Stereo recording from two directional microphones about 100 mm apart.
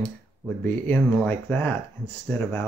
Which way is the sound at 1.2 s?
15° left (ahead or behind).